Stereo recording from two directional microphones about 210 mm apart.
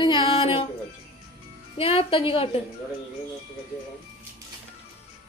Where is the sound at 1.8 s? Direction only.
25° left (ahead or behind).